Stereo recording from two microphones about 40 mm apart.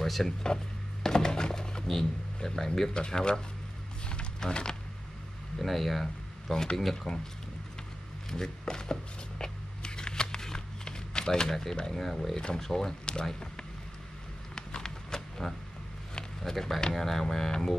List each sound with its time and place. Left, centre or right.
0.0 s speech: centre
1.0 s thunk: centre
2.9 s speech: left
4.1 s a sound: left
5.6 s speech: centre
8.3 s speech: centre
9.4 s a sound: centre
11.8 s speech: centre
14.5 s a sound: centre
16.9 s speech: centre